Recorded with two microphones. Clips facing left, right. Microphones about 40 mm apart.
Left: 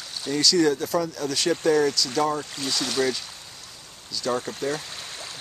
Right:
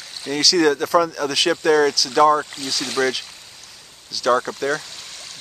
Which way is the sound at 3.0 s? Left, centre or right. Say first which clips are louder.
Right 4 dB; right.